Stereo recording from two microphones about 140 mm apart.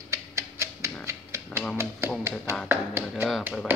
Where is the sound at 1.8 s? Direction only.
20° right (ahead or behind).